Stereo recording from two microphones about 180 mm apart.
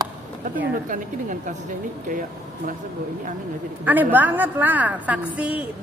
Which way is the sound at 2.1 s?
45° right (ahead or behind).